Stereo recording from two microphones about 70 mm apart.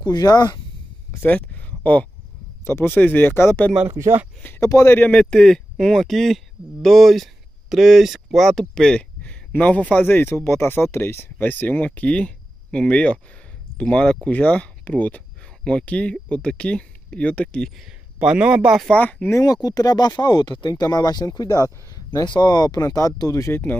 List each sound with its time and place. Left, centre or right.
0.0 s speech: left
1.2 s a sound: left
2.6 s speech: left
4.6 s a man's voice: left
4.8 s speech: left
5.1 s speech: centre
9.2 s a sound: centre
9.9 s speech: left
17.7 s speech: centre
18.9 s speech: centre
19.4 s speech: left
21.4 s speech: left
22.2 s speech: left